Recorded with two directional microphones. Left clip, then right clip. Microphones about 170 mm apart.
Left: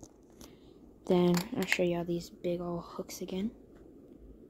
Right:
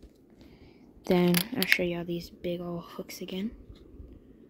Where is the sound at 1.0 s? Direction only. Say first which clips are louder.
Right 2 dB; 15° right (ahead or behind).